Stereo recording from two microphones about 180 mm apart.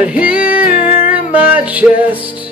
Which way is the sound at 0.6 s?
50° left (ahead or behind).